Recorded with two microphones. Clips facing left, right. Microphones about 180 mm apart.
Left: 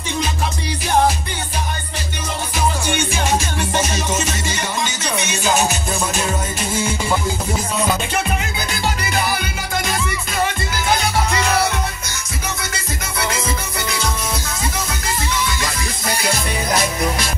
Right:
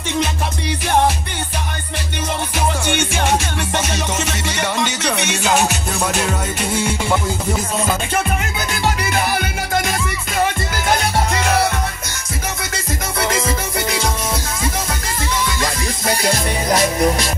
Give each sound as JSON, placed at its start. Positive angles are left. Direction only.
{"t": 2.9, "sound": "music", "side_deg": -65}
{"t": 8.8, "sound": "music", "side_deg": -55}
{"t": 13.3, "sound": "music", "side_deg": -30}
{"t": 16.2, "sound": "music", "side_deg": -40}